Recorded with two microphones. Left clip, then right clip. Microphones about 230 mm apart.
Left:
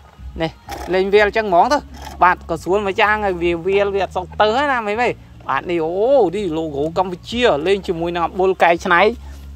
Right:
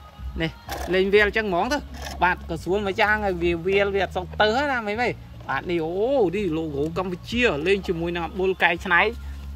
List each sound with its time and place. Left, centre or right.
0.4 s speech: centre; by 9.1 s left